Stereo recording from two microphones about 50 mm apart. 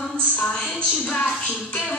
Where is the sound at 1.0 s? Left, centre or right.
Left.